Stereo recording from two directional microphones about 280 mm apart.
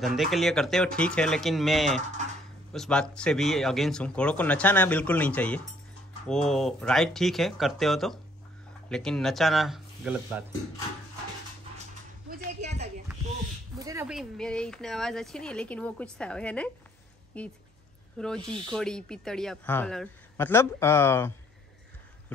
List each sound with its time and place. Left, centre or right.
0.0 s speech: centre
12.3 s a sound: right
13.7 s speech: centre